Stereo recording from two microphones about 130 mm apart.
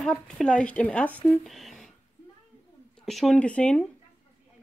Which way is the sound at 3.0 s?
Centre (ahead or behind).